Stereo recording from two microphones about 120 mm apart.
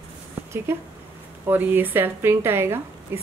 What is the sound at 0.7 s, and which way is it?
Speech, 20° right (ahead or behind).